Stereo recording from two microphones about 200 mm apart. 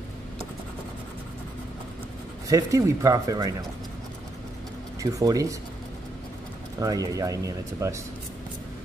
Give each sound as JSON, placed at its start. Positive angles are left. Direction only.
{"t": 2.4, "sound": "speech", "side_deg": -15}
{"t": 5.0, "sound": "speech", "side_deg": -20}
{"t": 6.8, "sound": "speech", "side_deg": -15}